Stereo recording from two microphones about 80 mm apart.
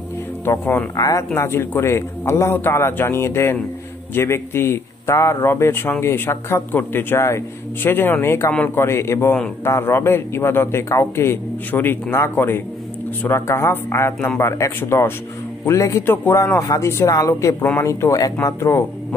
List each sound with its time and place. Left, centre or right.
0.5 s a man's voice: left
0.9 s speech: left
1.3 s a man's voice: left
16.5 s speech: left
18.6 s speech: left